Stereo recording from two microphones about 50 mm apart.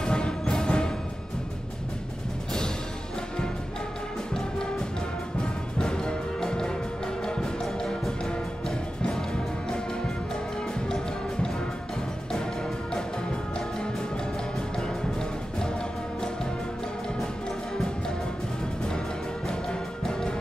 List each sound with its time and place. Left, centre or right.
0.0 s music: centre
5.8 s music: centre
19.7 s music: centre